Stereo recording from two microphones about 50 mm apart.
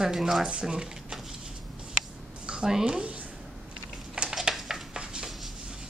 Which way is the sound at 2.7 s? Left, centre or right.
Centre.